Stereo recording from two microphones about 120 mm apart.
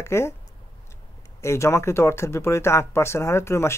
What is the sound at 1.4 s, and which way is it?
Speech, 25° left (ahead or behind).